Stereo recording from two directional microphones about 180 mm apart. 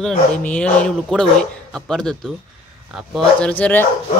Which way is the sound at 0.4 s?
5° left (ahead or behind).